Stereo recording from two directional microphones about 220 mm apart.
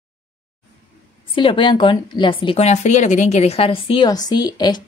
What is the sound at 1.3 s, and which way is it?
A woman's voice, 25° left (ahead or behind).